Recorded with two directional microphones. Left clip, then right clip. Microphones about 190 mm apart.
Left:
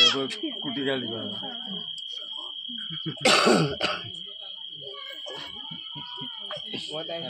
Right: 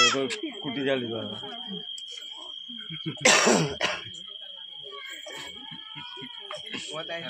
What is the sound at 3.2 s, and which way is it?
Throat clearing, 45° left (ahead or behind).